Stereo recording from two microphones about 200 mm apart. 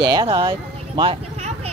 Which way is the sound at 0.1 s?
20° right (ahead or behind).